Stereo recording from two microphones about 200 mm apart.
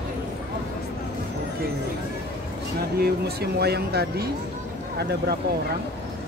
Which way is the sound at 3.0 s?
55° right (ahead or behind).